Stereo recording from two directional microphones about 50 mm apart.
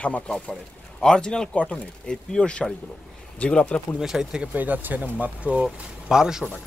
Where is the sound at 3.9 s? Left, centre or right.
Centre.